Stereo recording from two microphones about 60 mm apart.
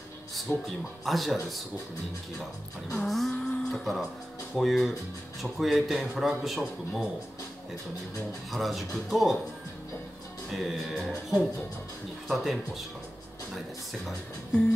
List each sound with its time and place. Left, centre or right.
0.7 s speech: centre
3.0 s music: centre
4.6 s speech: centre
8.5 s speech: centre
10.5 s speech: centre